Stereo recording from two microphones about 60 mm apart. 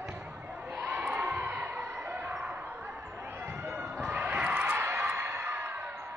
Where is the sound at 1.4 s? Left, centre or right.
Right.